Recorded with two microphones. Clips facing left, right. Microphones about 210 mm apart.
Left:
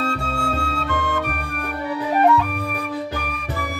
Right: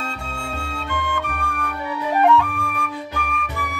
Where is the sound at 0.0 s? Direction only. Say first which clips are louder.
Left 7 dB; 75° left (ahead or behind).